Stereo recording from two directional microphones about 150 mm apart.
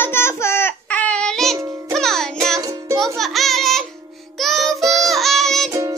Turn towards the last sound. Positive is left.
turn(degrees=-20)  # may be behind; listen again after turning